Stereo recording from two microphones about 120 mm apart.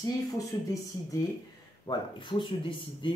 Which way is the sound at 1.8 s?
40° left (ahead or behind).